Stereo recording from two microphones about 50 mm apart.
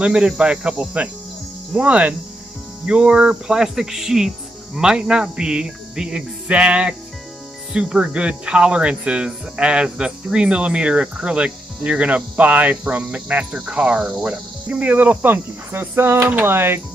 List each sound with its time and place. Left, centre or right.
0.0 s speech: centre
2.9 s cricket: right
4.7 s speech: centre
14.2 s cricket: right
15.7 s a sound: right